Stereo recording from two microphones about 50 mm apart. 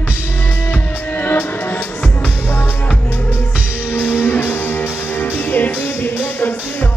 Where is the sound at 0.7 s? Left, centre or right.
Left.